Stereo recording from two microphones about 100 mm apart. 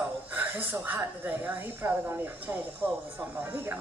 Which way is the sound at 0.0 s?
20° right (ahead or behind).